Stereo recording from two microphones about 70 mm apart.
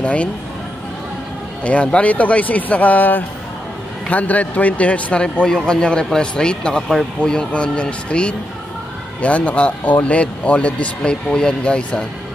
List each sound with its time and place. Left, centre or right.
0.0 s speech: centre
1.6 s speech: centre